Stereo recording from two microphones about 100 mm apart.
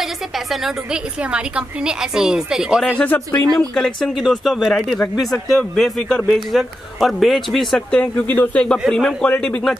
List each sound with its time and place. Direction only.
0.0 s a woman's voice: 5° right (ahead or behind)
2.9 s speech: 15° left (ahead or behind)
3.5 s a man's voice: 5° left (ahead or behind)
8.0 s speech: 15° left (ahead or behind)
8.7 s a man's voice: centre (ahead or behind)